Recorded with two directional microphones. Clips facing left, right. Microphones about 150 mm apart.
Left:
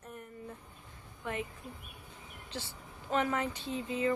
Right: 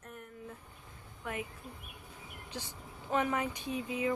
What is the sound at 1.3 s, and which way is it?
Speech, 5° right (ahead or behind).